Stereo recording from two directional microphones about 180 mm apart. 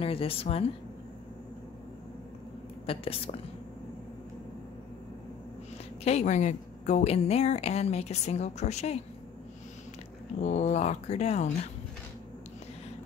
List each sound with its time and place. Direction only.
0.0 s a woman's voice: 30° left (ahead or behind)
2.9 s a woman's voice: 30° left (ahead or behind)
6.0 s a woman's voice: 40° left (ahead or behind)
10.4 s a woman's voice: 40° left (ahead or behind)